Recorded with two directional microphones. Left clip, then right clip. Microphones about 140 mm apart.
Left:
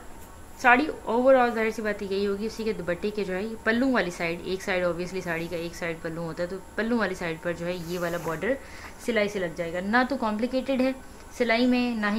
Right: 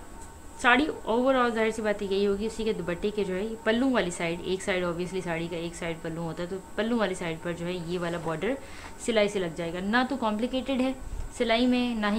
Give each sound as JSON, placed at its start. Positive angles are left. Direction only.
{"t": 0.6, "sound": "a woman's voice", "side_deg": -25}
{"t": 9.0, "sound": "a woman's voice", "side_deg": -25}